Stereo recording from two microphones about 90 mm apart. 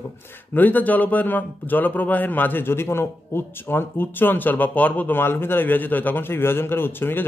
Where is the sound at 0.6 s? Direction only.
20° left (ahead or behind).